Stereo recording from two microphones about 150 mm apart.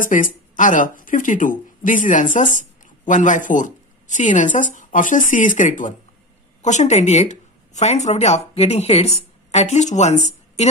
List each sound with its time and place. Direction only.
0.0 s a woman's voice: 60° left (ahead or behind)